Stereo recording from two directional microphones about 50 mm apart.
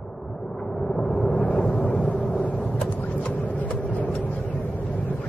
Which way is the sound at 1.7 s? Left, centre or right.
Left.